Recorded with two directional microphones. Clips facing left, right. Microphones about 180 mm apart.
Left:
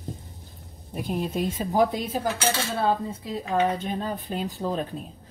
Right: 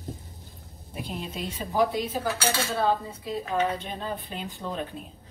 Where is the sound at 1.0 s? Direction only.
45° left (ahead or behind).